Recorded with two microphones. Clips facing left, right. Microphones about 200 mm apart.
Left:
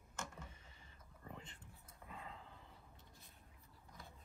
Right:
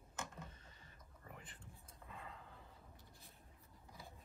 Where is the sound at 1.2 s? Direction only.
25° left (ahead or behind).